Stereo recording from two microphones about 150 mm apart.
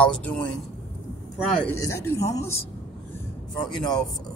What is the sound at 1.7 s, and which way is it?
Speech, 20° left (ahead or behind).